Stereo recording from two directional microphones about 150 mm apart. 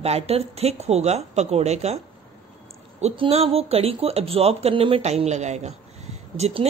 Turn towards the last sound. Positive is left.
turn(degrees=-45)  # may be behind; listen again after turning